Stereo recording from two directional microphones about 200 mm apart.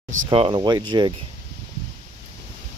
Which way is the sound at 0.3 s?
25° right (ahead or behind).